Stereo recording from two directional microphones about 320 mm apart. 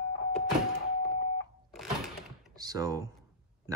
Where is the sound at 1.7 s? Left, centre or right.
Centre.